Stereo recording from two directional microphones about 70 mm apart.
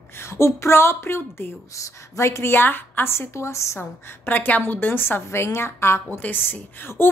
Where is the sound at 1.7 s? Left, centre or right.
Left.